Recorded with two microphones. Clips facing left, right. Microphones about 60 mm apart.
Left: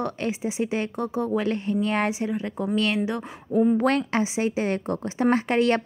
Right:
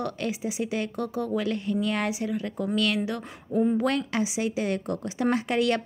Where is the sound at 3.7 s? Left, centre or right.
Left.